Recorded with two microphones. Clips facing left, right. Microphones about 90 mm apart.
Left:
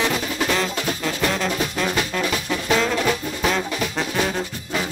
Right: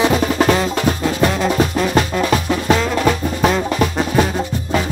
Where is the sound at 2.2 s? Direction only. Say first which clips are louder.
Right 7 dB; 45° right (ahead or behind).